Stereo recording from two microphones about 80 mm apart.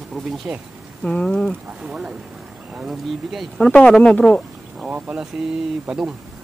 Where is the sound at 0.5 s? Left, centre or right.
Right.